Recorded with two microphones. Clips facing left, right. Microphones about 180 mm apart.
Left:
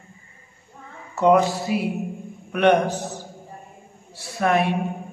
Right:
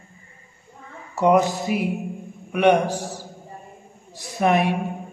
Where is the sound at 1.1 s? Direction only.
15° right (ahead or behind).